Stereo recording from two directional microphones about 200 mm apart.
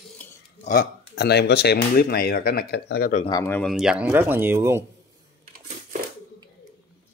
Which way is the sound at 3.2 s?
15° left (ahead or behind).